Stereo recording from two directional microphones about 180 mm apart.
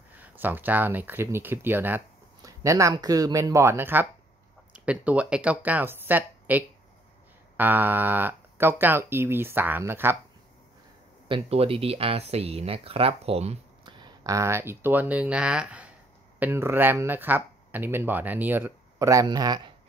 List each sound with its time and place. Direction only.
0.1 s speech: 10° right (ahead or behind)
11.2 s speech: 30° right (ahead or behind)
13.9 s speech: 20° right (ahead or behind)